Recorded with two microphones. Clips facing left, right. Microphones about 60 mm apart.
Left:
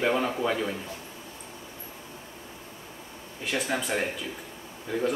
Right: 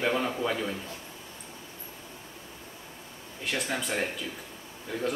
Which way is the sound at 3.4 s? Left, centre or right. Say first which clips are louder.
Left 2 dB; centre.